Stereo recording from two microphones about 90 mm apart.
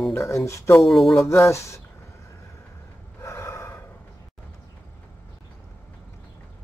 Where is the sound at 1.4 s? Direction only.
35° left (ahead or behind).